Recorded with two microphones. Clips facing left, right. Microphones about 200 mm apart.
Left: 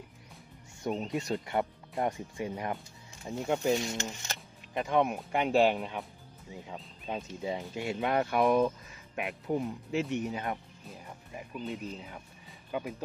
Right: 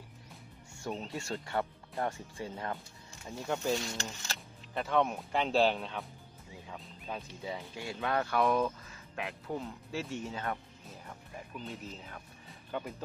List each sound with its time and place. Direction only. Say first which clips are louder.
0.8 s speech: left 6 dB; 20° left (ahead or behind)